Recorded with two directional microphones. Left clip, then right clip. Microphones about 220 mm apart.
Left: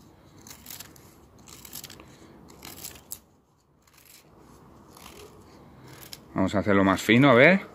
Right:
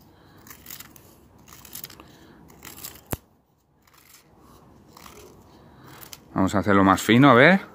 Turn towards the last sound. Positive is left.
turn(degrees=-15)  # may be behind; listen again after turning